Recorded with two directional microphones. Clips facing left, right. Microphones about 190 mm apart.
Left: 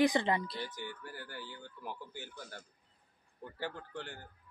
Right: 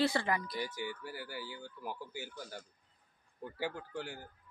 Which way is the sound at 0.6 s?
10° right (ahead or behind).